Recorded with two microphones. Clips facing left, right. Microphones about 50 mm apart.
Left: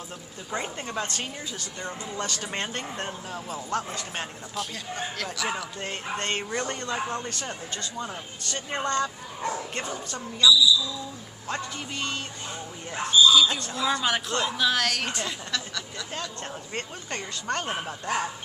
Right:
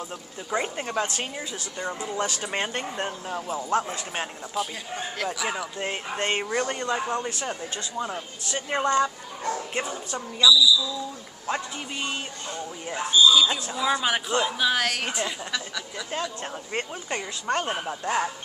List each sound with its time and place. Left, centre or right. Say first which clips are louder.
0.5 s speech: right 4 dB; centre
3.3 s a man's voice: right 5 dB; right